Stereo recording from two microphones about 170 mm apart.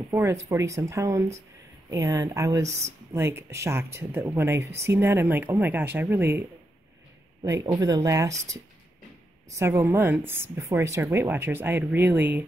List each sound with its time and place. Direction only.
0.1 s speech: 15° right (ahead or behind)
7.4 s speech: 20° right (ahead or behind)
9.6 s speech: 15° right (ahead or behind)